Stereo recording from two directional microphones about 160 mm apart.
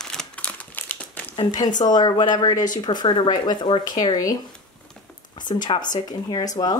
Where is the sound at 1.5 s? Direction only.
25° left (ahead or behind).